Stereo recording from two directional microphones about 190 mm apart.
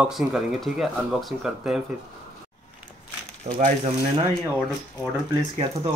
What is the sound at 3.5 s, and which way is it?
Speech, 35° right (ahead or behind).